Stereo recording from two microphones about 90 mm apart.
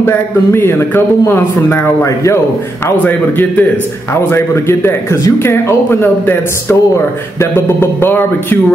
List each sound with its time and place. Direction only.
0.0 s speech: 25° left (ahead or behind)